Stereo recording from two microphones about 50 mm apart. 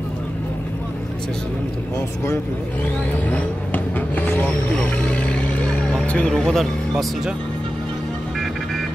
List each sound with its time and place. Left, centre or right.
3.1 s vehicle: left
5.7 s vehicle: centre
6.0 s speech: left
6.5 s speech: centre